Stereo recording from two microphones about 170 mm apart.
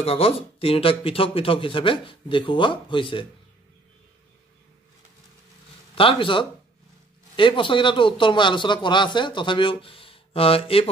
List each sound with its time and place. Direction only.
0.0 s speech: 35° left (ahead or behind)
5.9 s a man's voice: 30° left (ahead or behind)